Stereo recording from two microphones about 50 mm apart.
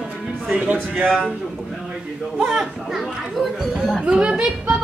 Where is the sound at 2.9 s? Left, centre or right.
Centre.